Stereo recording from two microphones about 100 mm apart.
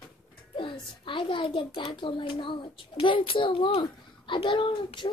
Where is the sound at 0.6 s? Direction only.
55° left (ahead or behind).